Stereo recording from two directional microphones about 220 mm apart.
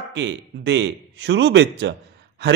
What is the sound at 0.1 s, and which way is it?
A man's voice, 55° right (ahead or behind).